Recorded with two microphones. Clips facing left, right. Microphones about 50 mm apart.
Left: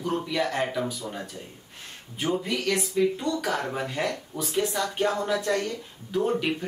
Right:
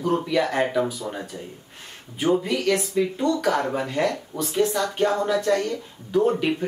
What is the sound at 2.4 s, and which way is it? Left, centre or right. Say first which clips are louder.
Speech: right 4 dB; centre.